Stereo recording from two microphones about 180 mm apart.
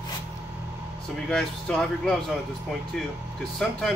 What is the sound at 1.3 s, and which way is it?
Speech, 5° left (ahead or behind).